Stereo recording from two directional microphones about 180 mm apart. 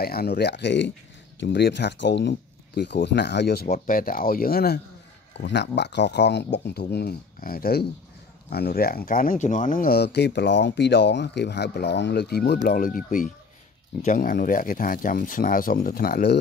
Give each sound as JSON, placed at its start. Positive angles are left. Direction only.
{"t": 0.0, "sound": "speech", "side_deg": 60}
{"t": 3.7, "sound": "speech", "side_deg": 50}
{"t": 5.4, "sound": "speech", "side_deg": 75}
{"t": 12.6, "sound": "speech", "side_deg": 50}